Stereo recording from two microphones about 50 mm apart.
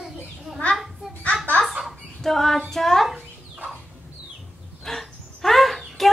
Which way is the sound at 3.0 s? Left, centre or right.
Centre.